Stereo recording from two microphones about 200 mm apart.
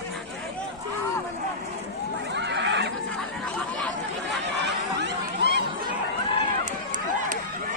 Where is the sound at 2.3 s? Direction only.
60° right (ahead or behind).